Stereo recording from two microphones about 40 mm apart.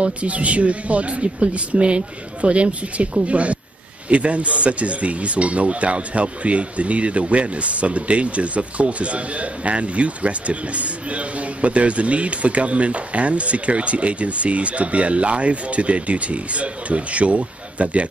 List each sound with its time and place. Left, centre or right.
0.0 s speech: right